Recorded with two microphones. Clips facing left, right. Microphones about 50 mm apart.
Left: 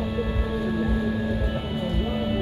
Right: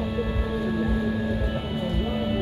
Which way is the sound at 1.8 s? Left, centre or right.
Centre.